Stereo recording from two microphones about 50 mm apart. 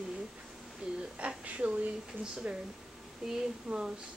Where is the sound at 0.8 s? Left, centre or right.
Centre.